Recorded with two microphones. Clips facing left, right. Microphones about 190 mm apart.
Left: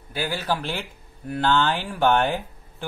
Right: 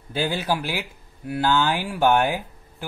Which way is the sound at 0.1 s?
25° right (ahead or behind).